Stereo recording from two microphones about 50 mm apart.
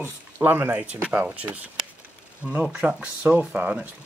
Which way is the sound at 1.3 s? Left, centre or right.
Right.